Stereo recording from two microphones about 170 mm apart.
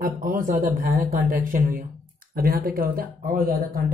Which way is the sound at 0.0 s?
55° right (ahead or behind).